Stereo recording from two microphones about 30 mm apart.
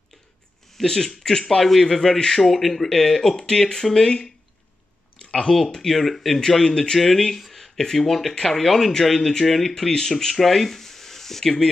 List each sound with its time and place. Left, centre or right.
0.8 s speech: centre
2.4 s speech: centre
3.3 s speech: left
5.2 s a sound: left
5.8 s speech: centre